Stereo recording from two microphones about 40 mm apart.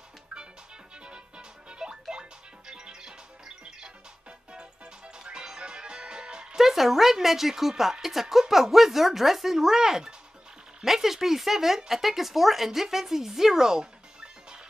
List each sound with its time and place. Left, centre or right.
1.7 s music: right
6.6 s speech: centre